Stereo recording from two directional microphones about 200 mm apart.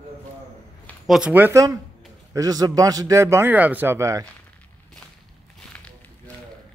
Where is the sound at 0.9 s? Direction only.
Centre (ahead or behind).